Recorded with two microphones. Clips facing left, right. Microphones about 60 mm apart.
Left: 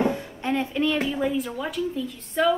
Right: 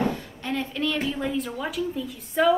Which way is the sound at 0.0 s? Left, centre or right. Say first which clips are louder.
Left 3 dB; centre.